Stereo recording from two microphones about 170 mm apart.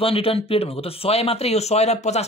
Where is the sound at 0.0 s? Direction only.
35° left (ahead or behind).